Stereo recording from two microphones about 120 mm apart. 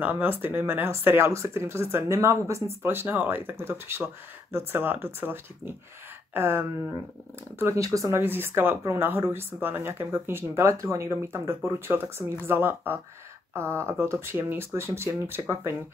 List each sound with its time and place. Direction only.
0.0 s speech: 15° right (ahead or behind)